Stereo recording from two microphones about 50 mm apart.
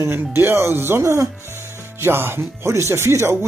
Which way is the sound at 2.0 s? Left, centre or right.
Right.